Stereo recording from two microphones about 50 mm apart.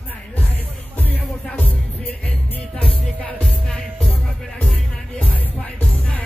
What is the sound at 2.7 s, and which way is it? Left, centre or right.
Music, left.